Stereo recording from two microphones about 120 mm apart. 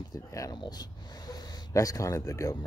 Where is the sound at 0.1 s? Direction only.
30° left (ahead or behind).